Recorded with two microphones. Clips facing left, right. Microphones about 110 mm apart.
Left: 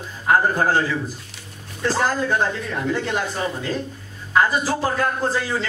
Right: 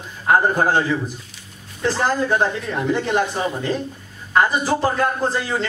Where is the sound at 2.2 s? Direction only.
10° right (ahead or behind).